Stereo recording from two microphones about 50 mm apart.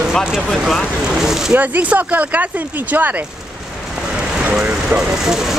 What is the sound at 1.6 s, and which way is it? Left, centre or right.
Speech, right.